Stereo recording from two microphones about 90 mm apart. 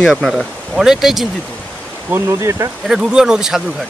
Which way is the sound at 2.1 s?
30° right (ahead or behind).